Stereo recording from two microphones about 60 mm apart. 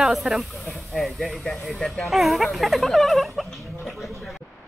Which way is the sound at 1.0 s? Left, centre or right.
Centre.